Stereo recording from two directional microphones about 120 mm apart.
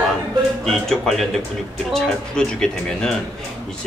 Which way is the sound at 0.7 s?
Centre (ahead or behind).